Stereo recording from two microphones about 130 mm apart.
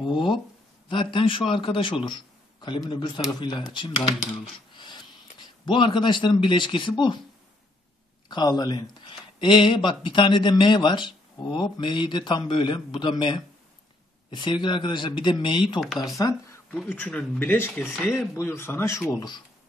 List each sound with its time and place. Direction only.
0.0 s speech: 40° left (ahead or behind)
8.3 s speech: 35° left (ahead or behind)
16.2 s speech: 25° left (ahead or behind)
16.9 s speech: 10° left (ahead or behind)
17.8 s speech: 5° right (ahead or behind)
18.3 s speech: 20° left (ahead or behind)